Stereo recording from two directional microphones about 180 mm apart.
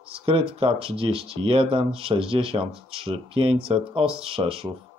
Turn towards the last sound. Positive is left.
turn(degrees=-30)  # may be behind; listen again after turning